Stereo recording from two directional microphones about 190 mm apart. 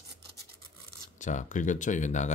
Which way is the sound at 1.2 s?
40° left (ahead or behind).